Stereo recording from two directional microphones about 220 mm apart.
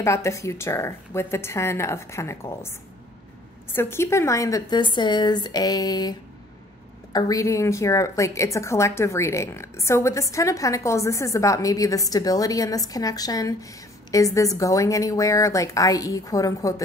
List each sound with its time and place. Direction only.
0.0 s a woman's voice: 15° left (ahead or behind)
3.7 s a woman's voice: 10° left (ahead or behind)